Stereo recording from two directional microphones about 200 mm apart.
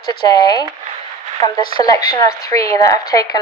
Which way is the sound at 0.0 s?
20° left (ahead or behind).